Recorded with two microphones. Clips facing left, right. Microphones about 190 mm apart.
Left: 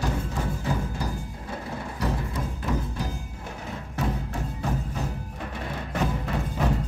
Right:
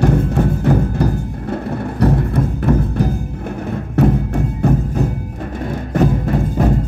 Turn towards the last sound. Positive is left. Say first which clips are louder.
# right 10 dB
turn(degrees=-45)  # may be behind; listen again after turning